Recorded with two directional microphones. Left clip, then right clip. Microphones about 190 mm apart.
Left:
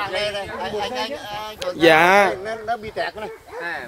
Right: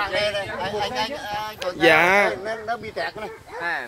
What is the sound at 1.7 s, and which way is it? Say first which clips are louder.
Speech: left 3 dB; 25° left (ahead or behind).